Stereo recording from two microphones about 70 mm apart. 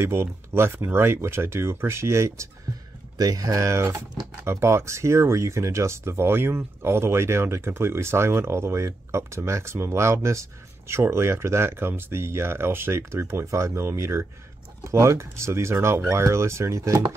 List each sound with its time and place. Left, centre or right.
0.0 s speech: right
3.2 s speech: right